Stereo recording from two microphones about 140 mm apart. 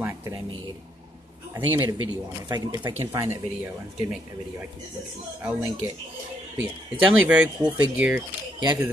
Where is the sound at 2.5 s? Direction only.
30° right (ahead or behind).